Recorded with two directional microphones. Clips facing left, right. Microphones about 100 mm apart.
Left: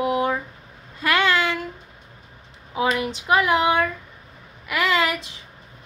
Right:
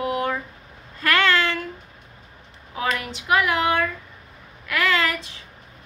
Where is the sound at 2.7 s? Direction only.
15° left (ahead or behind).